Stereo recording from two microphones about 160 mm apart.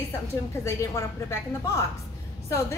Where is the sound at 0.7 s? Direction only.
20° left (ahead or behind).